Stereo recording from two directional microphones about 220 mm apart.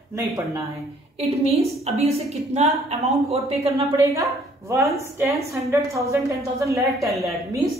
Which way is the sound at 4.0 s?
15° right (ahead or behind).